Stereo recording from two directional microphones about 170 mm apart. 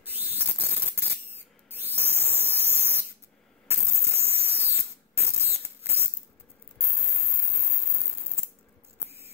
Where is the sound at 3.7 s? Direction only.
15° right (ahead or behind).